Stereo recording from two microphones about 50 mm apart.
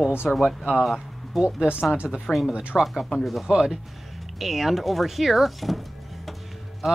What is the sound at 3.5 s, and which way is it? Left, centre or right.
Speech, centre.